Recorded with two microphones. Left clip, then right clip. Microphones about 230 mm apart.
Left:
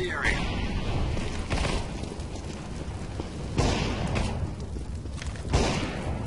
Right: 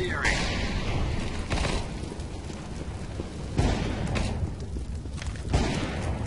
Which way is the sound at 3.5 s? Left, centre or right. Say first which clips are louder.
Left 2 dB; left.